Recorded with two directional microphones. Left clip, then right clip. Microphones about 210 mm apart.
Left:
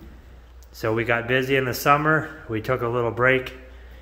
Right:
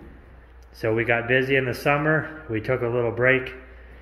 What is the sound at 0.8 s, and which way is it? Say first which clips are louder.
Speech: even; centre (ahead or behind).